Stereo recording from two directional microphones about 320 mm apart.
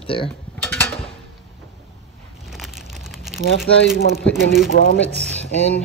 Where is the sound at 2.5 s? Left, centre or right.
Centre.